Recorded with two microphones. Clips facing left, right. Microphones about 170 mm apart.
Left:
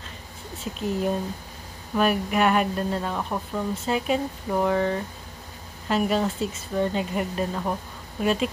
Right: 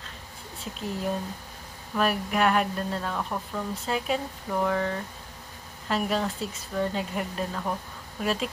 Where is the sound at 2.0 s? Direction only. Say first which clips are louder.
Left 3 dB; 5° left (ahead or behind).